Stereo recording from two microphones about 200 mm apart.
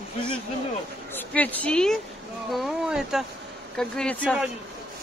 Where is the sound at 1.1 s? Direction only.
10° left (ahead or behind).